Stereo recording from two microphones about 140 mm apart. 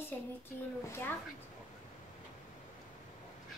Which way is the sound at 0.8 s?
20° left (ahead or behind).